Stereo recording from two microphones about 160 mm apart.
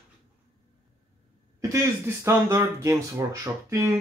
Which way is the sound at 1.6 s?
15° right (ahead or behind).